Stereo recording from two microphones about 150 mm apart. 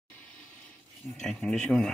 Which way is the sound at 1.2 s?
5° left (ahead or behind).